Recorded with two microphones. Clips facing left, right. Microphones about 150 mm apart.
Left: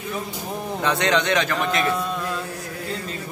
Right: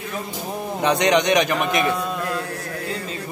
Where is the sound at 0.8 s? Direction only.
15° right (ahead or behind).